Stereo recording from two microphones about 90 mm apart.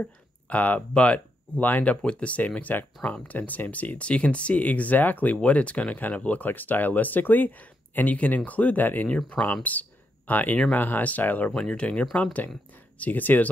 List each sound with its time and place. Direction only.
0.0 s speech: 15° left (ahead or behind)